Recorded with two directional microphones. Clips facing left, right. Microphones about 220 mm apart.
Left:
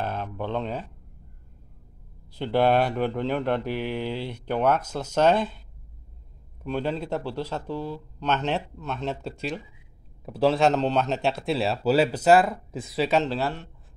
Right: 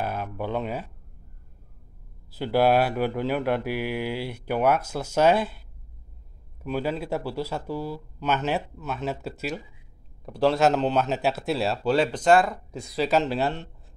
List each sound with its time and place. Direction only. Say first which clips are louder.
0.0 s speech: right 1 dB; 10° right (ahead or behind)
2.3 s speech: right 1 dB; 5° right (ahead or behind)
6.6 s a man's voice: even; 5° right (ahead or behind)
13.3 s speech: right 2 dB; 20° right (ahead or behind)